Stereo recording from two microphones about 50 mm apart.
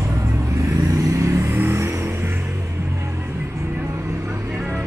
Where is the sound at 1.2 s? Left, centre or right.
Right.